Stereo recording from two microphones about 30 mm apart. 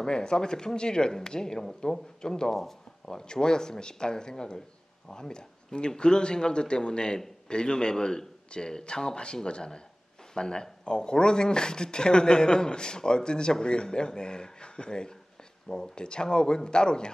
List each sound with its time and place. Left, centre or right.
0.0 s speech: left